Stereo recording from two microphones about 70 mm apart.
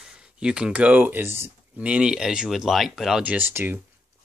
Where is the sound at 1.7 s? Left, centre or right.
Centre.